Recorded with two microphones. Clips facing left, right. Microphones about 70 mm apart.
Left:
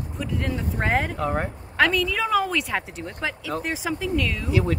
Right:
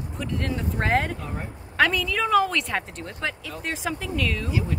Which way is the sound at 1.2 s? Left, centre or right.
Left.